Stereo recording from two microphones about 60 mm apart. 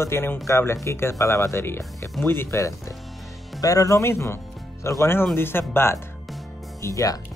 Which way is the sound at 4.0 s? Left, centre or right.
Left.